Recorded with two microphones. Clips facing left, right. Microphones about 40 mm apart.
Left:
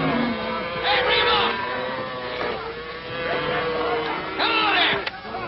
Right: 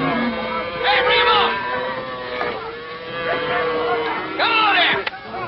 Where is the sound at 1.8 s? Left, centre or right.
Centre.